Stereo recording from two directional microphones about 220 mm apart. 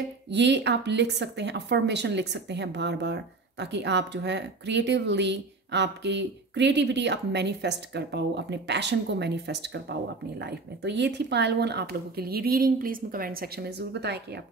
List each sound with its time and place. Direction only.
0.3 s speech: 50° right (ahead or behind)